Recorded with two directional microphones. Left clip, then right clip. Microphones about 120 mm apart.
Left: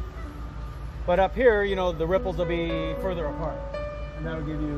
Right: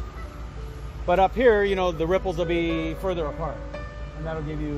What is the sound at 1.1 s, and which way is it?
A man's voice, 70° right (ahead or behind).